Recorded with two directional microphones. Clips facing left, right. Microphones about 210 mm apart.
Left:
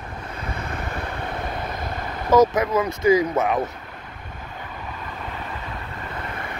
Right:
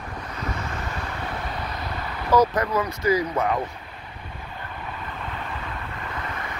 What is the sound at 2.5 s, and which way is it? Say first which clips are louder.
Speech: left 3 dB; 20° left (ahead or behind).